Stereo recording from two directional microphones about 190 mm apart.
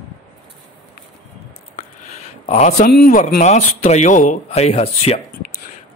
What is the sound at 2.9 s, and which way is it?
Speech, 55° left (ahead or behind).